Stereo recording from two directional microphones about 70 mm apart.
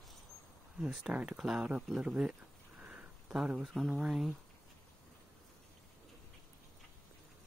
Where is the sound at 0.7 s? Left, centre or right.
Centre.